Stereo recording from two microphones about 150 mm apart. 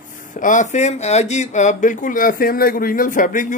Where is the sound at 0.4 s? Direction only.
55° left (ahead or behind).